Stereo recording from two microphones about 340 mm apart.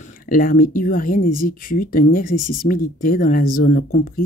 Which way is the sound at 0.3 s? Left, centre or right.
Left.